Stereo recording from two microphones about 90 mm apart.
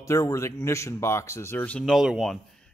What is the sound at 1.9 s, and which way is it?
Speech, 5° right (ahead or behind).